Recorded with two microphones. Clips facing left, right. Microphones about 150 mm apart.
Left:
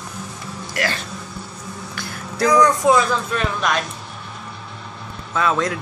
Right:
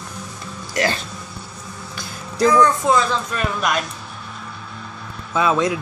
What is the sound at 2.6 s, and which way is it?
Speech, 15° left (ahead or behind).